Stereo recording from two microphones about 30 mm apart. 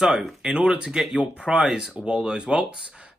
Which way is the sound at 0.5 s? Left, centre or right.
Right.